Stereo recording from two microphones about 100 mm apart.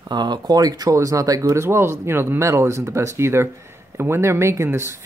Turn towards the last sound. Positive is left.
turn(degrees=-25)  # may be behind; listen again after turning